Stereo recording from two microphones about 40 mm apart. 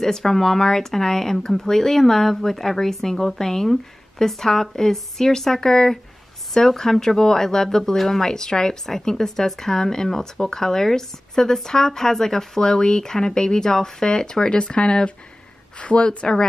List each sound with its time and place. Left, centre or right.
0.0 s speech: centre
8.8 s speech: centre